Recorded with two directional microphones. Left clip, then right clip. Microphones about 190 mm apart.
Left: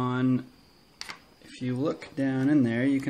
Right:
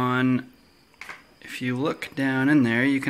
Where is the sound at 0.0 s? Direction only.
10° right (ahead or behind).